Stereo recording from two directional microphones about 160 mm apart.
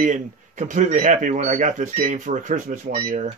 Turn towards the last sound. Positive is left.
turn(degrees=-50)  # may be behind; listen again after turning